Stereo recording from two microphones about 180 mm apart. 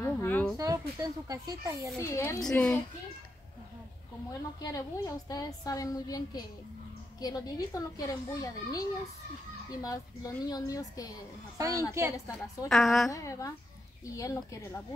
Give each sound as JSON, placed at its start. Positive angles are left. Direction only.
{"t": 0.0, "sound": "a sound", "side_deg": 10}
{"t": 0.6, "sound": "speech", "side_deg": -20}
{"t": 2.0, "sound": "speech", "side_deg": 15}
{"t": 2.4, "sound": "a woman's voice", "side_deg": 5}
{"t": 4.6, "sound": "a woman's voice", "side_deg": 20}
{"t": 11.5, "sound": "speech", "side_deg": -20}
{"t": 12.3, "sound": "speech", "side_deg": 15}
{"t": 12.6, "sound": "a woman's voice", "side_deg": 0}
{"t": 13.1, "sound": "speech", "side_deg": 15}